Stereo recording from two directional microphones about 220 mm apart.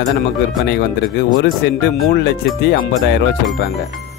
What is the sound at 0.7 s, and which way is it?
Speech, 50° left (ahead or behind).